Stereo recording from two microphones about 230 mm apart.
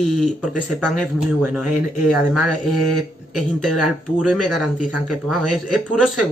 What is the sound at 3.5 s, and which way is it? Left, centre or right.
Speech, right.